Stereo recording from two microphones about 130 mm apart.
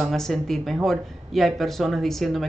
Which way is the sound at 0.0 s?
Centre (ahead or behind).